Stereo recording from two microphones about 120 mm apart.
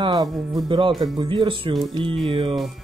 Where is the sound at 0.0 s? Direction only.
35° right (ahead or behind).